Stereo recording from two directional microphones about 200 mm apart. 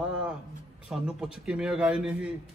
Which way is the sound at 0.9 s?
5° right (ahead or behind).